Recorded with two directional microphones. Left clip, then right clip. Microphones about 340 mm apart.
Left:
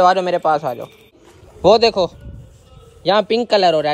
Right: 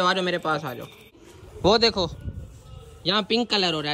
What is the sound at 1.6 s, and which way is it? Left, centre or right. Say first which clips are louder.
A man's voice: left 8 dB; centre.